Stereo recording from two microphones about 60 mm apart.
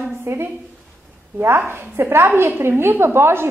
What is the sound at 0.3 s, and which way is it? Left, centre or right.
Speech, right.